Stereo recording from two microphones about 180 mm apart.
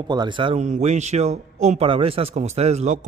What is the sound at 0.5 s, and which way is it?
Speech, 40° right (ahead or behind).